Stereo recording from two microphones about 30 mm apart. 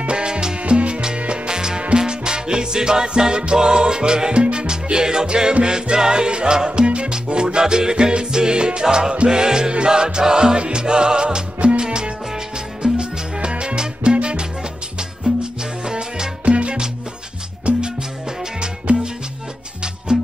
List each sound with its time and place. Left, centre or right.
0.1 s music: right
0.6 s salsa music: right
1.1 s music: right
8.8 s music: right
12.8 s salsa music: right
15.3 s music: right
16.4 s music: right
17.6 s music: right
18.9 s music: right